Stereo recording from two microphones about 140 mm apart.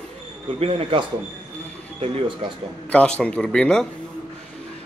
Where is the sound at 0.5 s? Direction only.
45° right (ahead or behind).